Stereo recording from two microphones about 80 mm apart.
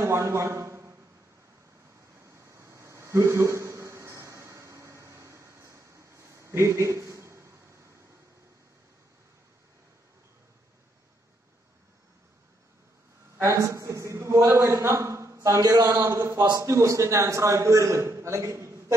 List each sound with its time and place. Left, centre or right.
0.0 s a man's voice: right
2.2 s a sound: right
13.4 s a man's voice: right